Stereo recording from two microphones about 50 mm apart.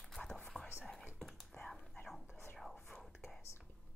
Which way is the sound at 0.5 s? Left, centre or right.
Centre.